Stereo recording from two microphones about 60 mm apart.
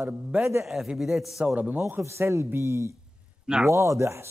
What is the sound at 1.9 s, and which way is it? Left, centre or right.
A man's voice, right.